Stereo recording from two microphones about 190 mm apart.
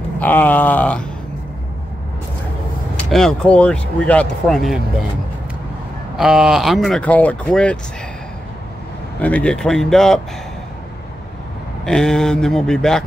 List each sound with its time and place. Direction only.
0.2 s a sound: 10° left (ahead or behind)
3.1 s speech: centre (ahead or behind)
6.1 s speech: 5° right (ahead or behind)
9.2 s speech: 5° left (ahead or behind)
11.8 s speech: 5° left (ahead or behind)